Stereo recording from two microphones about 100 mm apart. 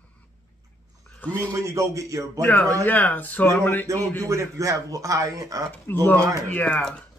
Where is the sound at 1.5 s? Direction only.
30° right (ahead or behind).